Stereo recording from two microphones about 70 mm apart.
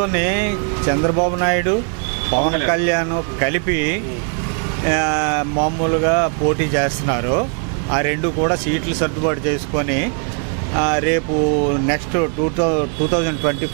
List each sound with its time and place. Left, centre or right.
0.0 s speech: centre